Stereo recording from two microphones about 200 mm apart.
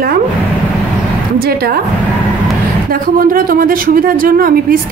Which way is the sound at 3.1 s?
45° right (ahead or behind).